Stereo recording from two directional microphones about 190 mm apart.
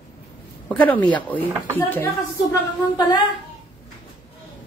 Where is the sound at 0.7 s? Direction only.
10° left (ahead or behind).